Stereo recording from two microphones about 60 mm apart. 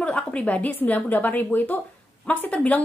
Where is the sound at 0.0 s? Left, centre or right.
Left.